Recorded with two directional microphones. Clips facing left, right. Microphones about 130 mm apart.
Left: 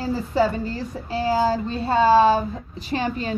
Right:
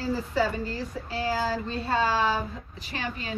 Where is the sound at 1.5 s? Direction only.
25° left (ahead or behind).